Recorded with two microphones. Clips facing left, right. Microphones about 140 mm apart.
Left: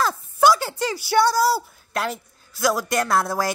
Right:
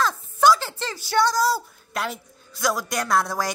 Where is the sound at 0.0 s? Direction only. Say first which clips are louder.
Left 1 dB; 10° left (ahead or behind).